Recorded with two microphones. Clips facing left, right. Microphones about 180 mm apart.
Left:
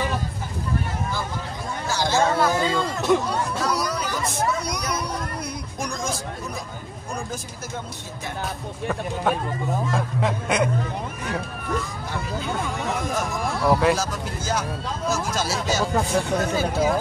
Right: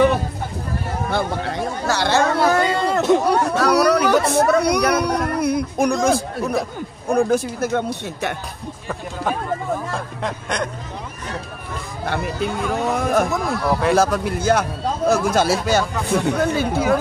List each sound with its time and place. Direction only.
1.1 s a sound: 70° right (ahead or behind)
7.1 s speech: 60° right (ahead or behind)
9.9 s speech: 5° left (ahead or behind)
13.0 s a man's voice: 65° right (ahead or behind)